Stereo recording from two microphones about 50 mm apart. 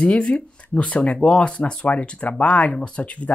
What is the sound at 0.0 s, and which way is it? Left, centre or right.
Speech, left.